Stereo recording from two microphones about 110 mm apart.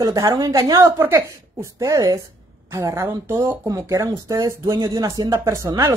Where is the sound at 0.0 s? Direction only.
35° right (ahead or behind).